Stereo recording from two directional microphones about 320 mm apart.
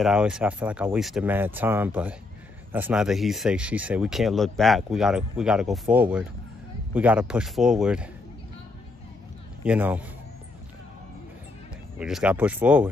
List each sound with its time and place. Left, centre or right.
0.0 s speech: centre
9.7 s speech: centre
12.0 s speech: centre